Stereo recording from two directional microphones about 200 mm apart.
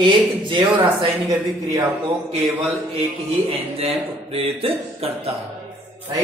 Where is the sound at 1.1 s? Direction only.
Centre (ahead or behind).